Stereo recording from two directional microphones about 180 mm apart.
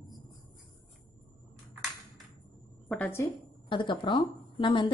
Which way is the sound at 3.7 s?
25° left (ahead or behind).